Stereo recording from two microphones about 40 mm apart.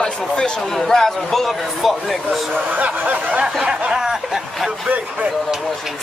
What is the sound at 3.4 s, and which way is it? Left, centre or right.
Snicker, centre.